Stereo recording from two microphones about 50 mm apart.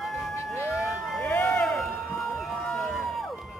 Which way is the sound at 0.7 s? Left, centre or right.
Centre.